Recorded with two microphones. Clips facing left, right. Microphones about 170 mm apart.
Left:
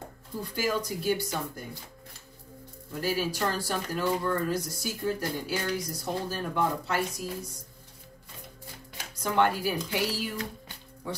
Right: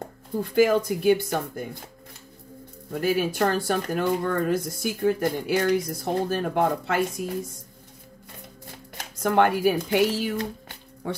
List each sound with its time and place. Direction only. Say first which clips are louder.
0.4 s speech: right 10 dB; 60° right (ahead or behind)
2.9 s speech: right 6 dB; 60° right (ahead or behind)
9.2 s speech: right 6 dB; 55° right (ahead or behind)